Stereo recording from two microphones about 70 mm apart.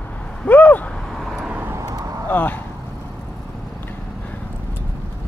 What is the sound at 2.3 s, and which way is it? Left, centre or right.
Speech, left.